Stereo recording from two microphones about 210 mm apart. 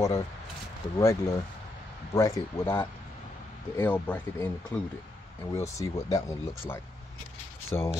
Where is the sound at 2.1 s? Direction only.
15° left (ahead or behind).